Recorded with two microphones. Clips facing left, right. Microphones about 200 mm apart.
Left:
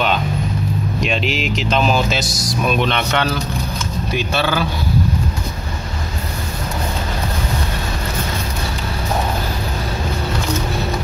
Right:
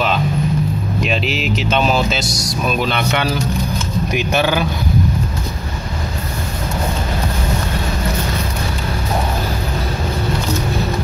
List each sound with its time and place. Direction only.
1.0 s speech: centre (ahead or behind)